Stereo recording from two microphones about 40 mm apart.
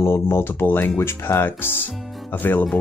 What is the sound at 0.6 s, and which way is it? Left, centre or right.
Speech, left.